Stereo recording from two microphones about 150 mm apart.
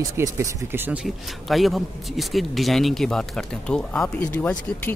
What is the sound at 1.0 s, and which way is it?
Speech, centre (ahead or behind).